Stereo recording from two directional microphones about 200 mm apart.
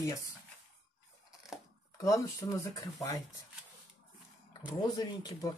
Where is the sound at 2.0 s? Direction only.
15° left (ahead or behind).